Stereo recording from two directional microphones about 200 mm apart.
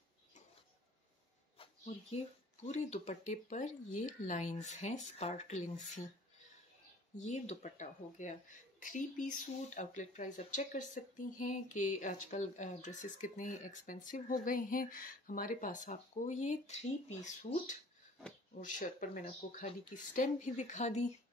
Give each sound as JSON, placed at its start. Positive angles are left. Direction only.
{"t": 1.6, "sound": "speech", "side_deg": 30}
{"t": 7.2, "sound": "speech", "side_deg": 35}